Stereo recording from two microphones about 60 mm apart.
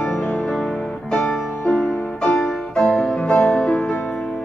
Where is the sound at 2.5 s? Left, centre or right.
Centre.